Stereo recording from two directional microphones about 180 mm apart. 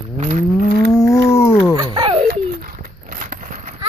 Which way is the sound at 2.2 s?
50° right (ahead or behind).